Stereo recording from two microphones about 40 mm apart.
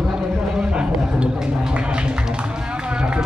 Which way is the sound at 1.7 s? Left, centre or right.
Right.